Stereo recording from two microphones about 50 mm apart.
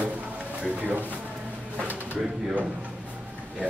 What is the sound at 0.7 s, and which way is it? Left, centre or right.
Speech, right.